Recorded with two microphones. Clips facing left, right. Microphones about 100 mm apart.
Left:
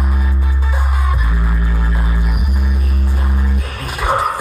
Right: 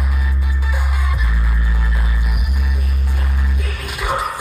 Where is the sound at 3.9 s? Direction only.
35° left (ahead or behind).